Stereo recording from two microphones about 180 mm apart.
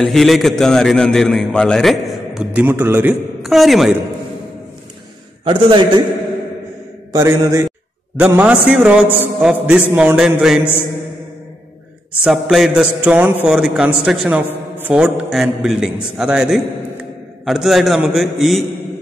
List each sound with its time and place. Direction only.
0.0 s a man's voice: centre (ahead or behind)
5.4 s a man's voice: 30° right (ahead or behind)
7.1 s a man's voice: 15° right (ahead or behind)
12.2 s a man's voice: centre (ahead or behind)